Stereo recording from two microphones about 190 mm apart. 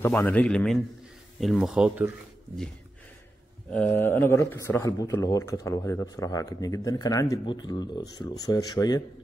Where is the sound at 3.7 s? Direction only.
10° left (ahead or behind).